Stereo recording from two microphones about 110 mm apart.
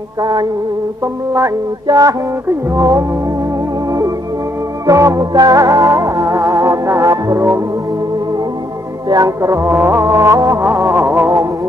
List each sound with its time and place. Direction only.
0.2 s music: 35° right (ahead or behind)
4.8 s music: 30° right (ahead or behind)
9.1 s music: 30° right (ahead or behind)